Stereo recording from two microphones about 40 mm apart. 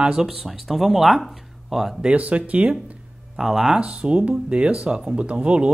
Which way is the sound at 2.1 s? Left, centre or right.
Right.